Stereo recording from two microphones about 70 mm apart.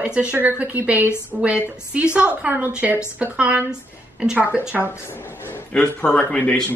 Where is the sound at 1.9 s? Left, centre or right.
Centre.